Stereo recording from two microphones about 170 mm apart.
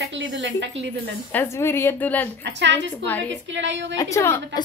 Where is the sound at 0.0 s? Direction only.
90° right.